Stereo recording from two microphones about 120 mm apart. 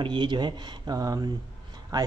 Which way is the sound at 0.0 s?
40° right (ahead or behind).